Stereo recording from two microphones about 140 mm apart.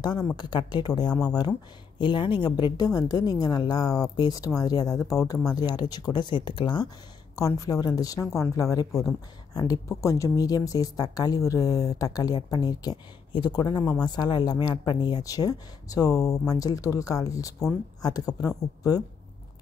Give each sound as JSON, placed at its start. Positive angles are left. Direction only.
{"t": 0.0, "sound": "speech", "side_deg": 30}